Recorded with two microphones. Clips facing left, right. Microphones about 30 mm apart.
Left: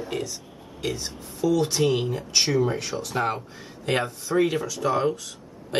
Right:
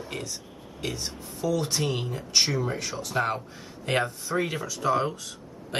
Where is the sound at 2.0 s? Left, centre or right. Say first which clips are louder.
Left 1 dB; centre.